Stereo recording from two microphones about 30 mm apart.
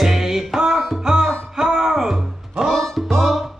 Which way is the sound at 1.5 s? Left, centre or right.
Centre.